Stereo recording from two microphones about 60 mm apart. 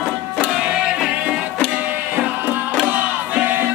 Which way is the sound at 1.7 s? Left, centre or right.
Right.